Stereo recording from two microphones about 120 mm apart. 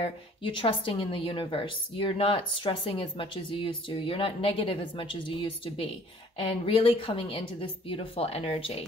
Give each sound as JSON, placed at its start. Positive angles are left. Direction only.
{"t": 0.0, "sound": "speech", "side_deg": 45}